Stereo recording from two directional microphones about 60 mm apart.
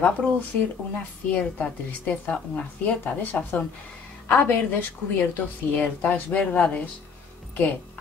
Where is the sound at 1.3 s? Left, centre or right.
Left.